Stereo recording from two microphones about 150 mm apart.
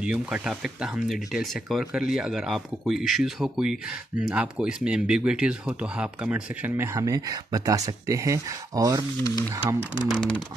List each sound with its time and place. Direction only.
0.0 s speech: 5° right (ahead or behind)
10.0 s speech: 5° left (ahead or behind)